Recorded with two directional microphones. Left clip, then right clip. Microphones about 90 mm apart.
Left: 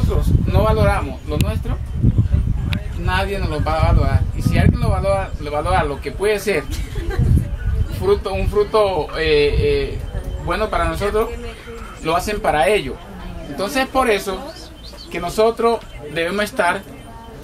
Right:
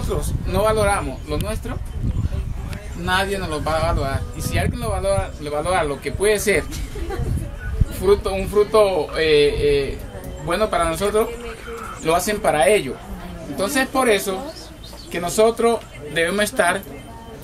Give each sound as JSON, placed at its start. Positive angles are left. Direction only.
{"t": 0.1, "sound": "speech", "side_deg": -20}
{"t": 3.1, "sound": "speech", "side_deg": -10}
{"t": 8.0, "sound": "a man's voice", "side_deg": -10}